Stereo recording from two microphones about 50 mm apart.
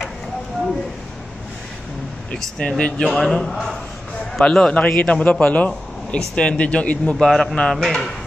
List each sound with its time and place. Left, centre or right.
2.8 s a man's voice: centre
7.2 s a man's voice: centre